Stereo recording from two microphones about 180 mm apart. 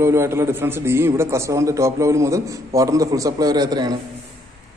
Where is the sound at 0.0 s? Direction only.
15° right (ahead or behind).